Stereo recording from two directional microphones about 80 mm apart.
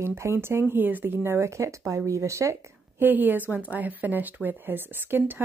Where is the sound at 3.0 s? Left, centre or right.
Right.